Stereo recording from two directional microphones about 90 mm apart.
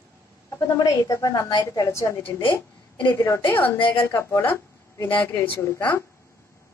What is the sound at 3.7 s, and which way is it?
Speech, 70° left (ahead or behind).